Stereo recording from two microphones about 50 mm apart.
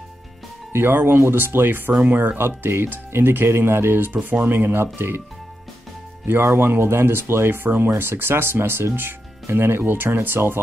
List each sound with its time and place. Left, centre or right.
0.7 s speech: right
4.1 s speech: right
6.2 s speech: right